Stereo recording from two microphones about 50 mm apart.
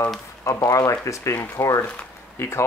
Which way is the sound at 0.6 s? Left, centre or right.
Left.